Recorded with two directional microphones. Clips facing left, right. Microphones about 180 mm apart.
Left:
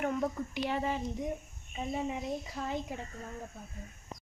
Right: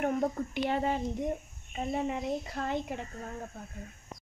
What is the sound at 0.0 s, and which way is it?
Speech, 55° right (ahead or behind).